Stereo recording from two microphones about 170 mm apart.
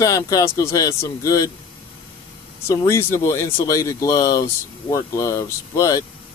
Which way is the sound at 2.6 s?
15° left (ahead or behind).